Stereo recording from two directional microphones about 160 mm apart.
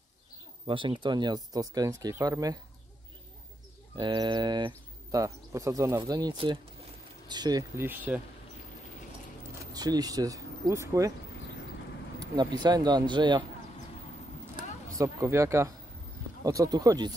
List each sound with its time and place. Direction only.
0.7 s speech: 30° right (ahead or behind)
3.9 s speech: 30° right (ahead or behind); by 8.2 s 10° right (ahead or behind)
9.7 s speech: 25° right (ahead or behind)
12.6 s speech: 25° right (ahead or behind)
15.0 s speech: 20° right (ahead or behind)